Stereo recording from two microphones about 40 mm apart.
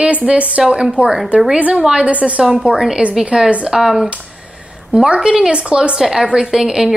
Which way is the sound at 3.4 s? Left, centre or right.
Centre.